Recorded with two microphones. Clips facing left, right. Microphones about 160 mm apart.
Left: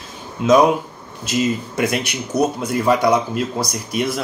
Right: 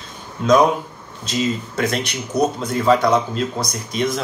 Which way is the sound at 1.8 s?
10° left (ahead or behind).